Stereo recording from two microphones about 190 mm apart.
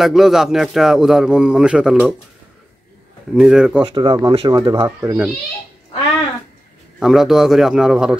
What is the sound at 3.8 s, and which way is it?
Speech, 25° right (ahead or behind).